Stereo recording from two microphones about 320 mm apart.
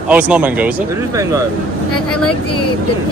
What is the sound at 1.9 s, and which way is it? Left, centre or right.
Speech, left.